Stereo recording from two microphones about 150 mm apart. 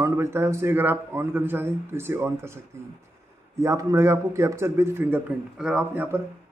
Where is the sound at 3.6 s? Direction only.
20° right (ahead or behind).